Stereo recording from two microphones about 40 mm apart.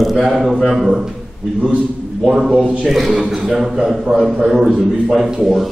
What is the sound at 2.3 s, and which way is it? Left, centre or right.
A man's voice, centre.